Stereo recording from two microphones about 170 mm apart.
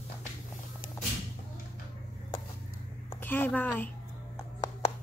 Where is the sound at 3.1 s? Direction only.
10° left (ahead or behind).